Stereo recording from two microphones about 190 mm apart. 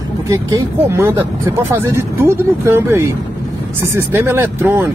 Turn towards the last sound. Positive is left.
turn(degrees=-10)  # may be behind; listen again after turning